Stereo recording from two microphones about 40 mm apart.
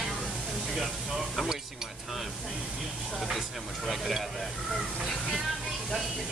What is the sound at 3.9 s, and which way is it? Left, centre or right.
Speech, centre.